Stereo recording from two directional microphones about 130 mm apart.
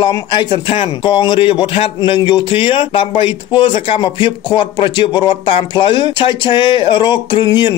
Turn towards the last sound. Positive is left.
turn(degrees=35)  # may be behind; listen again after turning